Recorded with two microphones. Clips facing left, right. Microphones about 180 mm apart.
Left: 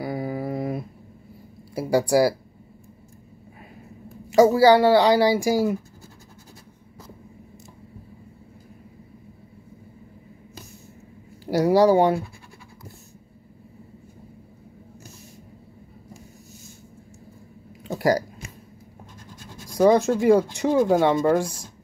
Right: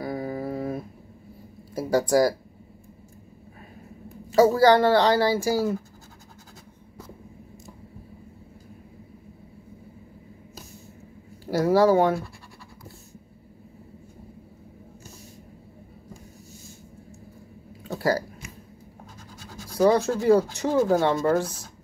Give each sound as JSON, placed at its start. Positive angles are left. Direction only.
{"t": 0.0, "sound": "a sound", "side_deg": 10}
{"t": 1.8, "sound": "speech", "side_deg": 10}
{"t": 4.3, "sound": "speech", "side_deg": 10}
{"t": 11.5, "sound": "speech", "side_deg": 15}
{"t": 17.8, "sound": "a sound", "side_deg": 15}
{"t": 19.7, "sound": "speech", "side_deg": 15}